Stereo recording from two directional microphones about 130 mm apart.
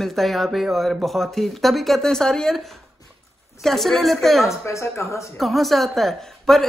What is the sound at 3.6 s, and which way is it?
Speech, centre (ahead or behind).